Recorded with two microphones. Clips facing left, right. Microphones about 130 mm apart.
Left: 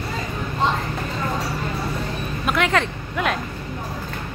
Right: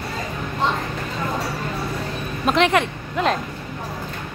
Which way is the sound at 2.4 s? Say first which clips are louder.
Right 3 dB; 25° right (ahead or behind).